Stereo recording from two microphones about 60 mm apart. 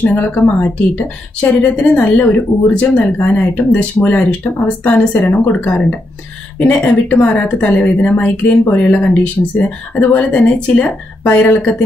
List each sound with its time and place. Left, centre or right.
0.0 s speech: left